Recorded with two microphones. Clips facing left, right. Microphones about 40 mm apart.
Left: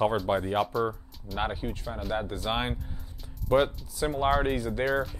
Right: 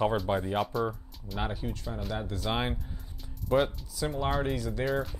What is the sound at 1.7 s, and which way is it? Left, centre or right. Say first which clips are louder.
Speech: left 3 dB; left.